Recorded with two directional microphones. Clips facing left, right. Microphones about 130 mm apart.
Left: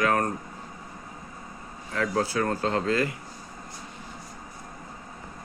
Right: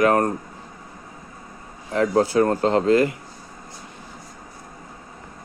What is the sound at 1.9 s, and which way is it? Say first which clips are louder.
Speech: right 8 dB; 30° right (ahead or behind).